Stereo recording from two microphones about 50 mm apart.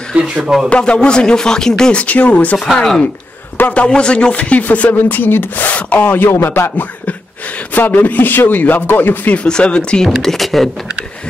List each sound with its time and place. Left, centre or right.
0.1 s a man's voice: centre
0.7 s a man's voice: left
2.0 s speech: left
2.7 s a man's voice: centre; by 6.2 s left
6.2 s music: left
7.7 s speech: left
9.3 s speech: centre
10.0 s speech: centre